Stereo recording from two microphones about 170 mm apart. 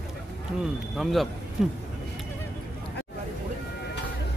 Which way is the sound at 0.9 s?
Centre (ahead or behind).